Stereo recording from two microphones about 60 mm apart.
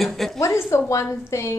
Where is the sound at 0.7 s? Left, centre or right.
Left.